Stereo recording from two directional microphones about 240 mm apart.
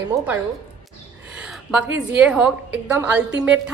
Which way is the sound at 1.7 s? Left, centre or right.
Centre.